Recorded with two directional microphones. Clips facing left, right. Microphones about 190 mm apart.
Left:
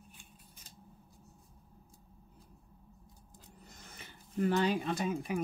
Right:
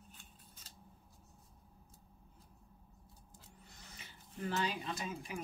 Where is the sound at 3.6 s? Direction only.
50° left (ahead or behind).